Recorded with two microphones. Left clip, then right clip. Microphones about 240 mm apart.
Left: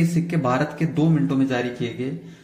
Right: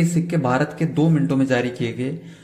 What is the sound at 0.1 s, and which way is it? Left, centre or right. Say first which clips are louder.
Speech: right 1 dB; centre.